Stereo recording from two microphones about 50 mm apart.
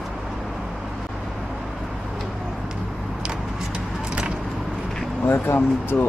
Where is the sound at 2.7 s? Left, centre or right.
Centre.